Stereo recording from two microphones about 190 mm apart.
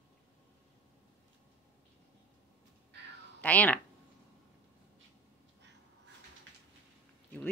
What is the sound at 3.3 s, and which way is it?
Speech, 10° left (ahead or behind).